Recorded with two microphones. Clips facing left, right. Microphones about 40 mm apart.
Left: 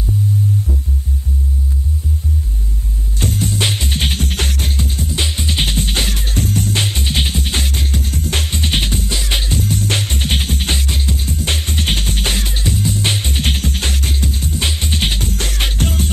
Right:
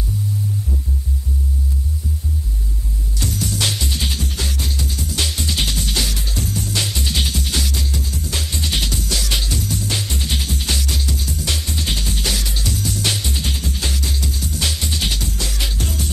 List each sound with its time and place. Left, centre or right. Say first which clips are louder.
3.2 s music: left 4 dB; left